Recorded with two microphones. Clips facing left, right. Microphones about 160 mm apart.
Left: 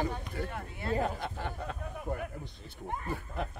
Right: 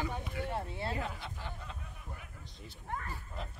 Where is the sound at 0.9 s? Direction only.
45° left (ahead or behind); by 2.5 s 60° left (ahead or behind).